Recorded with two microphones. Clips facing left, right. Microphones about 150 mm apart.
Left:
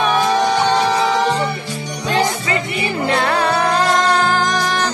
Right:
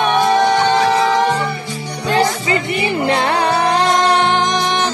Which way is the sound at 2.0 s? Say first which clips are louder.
Right 2 dB; 25° right (ahead or behind).